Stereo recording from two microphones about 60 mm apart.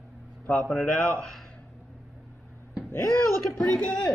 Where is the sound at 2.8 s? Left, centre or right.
Left.